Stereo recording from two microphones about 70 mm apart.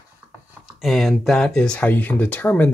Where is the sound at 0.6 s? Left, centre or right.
Centre.